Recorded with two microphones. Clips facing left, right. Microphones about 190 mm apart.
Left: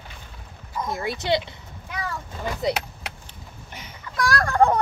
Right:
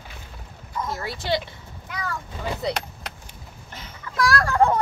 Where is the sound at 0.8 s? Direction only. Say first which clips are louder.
Left 3 dB; 20° left (ahead or behind).